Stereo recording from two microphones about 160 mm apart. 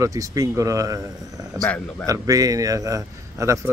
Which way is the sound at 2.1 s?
20° right (ahead or behind).